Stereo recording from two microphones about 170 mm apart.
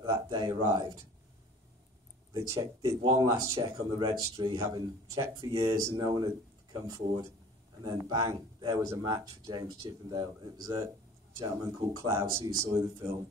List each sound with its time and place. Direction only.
0.0 s speech: 25° right (ahead or behind)
2.3 s speech: 20° right (ahead or behind)
3.0 s speech: 30° right (ahead or behind)
3.3 s speech: 15° right (ahead or behind)